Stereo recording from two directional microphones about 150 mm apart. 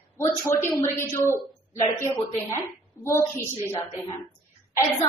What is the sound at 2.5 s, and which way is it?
Speech, 20° left (ahead or behind).